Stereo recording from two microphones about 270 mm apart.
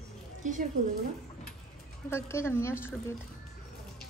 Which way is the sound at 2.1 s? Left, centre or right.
Centre.